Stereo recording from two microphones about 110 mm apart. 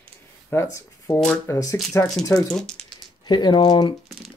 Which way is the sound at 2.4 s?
5° left (ahead or behind).